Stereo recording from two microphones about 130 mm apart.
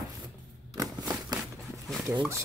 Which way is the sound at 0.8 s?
30° right (ahead or behind).